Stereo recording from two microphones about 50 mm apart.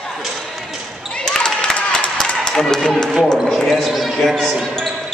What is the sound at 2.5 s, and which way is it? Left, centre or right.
Speech, centre.